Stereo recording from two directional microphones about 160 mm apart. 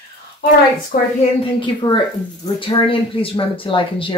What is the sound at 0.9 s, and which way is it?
Speech, 60° left (ahead or behind).